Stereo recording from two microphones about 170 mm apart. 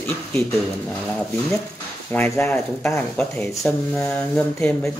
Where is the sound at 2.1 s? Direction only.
15° left (ahead or behind).